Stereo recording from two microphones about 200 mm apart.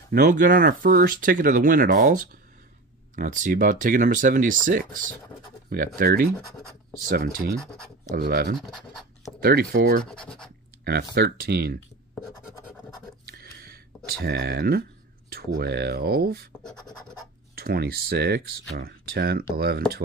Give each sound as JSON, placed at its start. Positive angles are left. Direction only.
{"t": 0.1, "sound": "speech", "side_deg": -45}
{"t": 8.2, "sound": "speech", "side_deg": -50}
{"t": 8.5, "sound": "speech", "side_deg": 0}
{"t": 9.4, "sound": "speech", "side_deg": -50}
{"t": 10.0, "sound": "speech", "side_deg": 5}
{"t": 10.8, "sound": "a sound", "side_deg": -55}
{"t": 11.1, "sound": "speech", "side_deg": -50}
{"t": 13.3, "sound": "speech", "side_deg": -50}
{"t": 17.6, "sound": "speech", "side_deg": -50}